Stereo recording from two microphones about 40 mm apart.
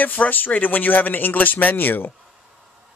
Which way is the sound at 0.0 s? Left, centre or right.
Left.